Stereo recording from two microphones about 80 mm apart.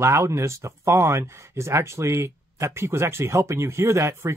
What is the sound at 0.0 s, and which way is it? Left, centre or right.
Speech, right.